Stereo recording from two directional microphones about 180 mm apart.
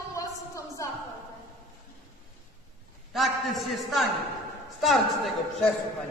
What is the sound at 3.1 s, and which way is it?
A man's voice, centre (ahead or behind).